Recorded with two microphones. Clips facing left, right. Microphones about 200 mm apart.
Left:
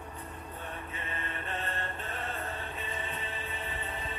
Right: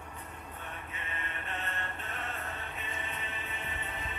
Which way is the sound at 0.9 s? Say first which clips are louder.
Left 3 dB; 35° left (ahead or behind).